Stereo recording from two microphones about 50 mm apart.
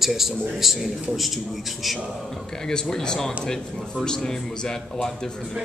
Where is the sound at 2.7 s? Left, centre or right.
Centre.